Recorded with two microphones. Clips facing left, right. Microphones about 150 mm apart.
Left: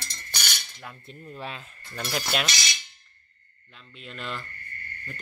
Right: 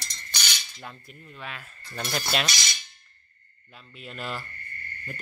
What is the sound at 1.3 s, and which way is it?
Speech, 35° left (ahead or behind).